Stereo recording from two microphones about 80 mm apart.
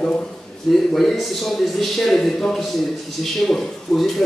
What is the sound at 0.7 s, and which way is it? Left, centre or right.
Speech, centre.